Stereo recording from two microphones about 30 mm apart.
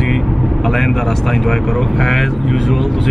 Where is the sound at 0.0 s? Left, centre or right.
Centre.